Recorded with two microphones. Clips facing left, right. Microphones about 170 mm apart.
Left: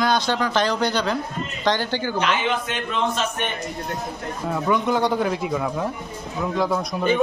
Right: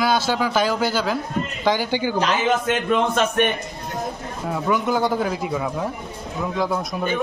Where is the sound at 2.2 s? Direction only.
40° right (ahead or behind).